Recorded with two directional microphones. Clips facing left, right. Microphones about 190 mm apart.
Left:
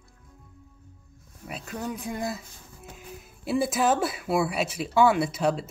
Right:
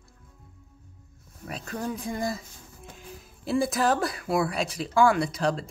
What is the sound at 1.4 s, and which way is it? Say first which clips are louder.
Speech: right 1 dB; 5° left (ahead or behind).